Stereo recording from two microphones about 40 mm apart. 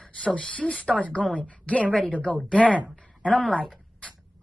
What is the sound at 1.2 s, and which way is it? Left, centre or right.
A woman's voice, left.